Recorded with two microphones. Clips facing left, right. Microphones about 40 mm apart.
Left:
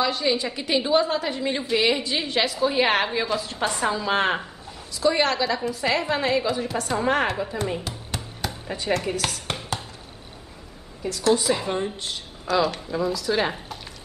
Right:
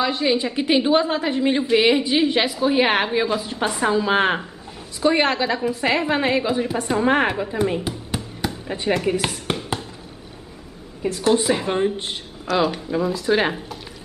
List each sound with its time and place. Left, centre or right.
0.0 s a woman's voice: centre
5.0 s a woman's voice: right
9.7 s basketball bounce: centre
11.0 s a woman's voice: right
12.6 s a woman's voice: centre
13.1 s a woman's voice: right